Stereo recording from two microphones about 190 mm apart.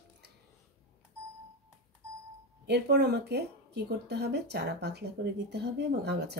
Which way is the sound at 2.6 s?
60° right (ahead or behind).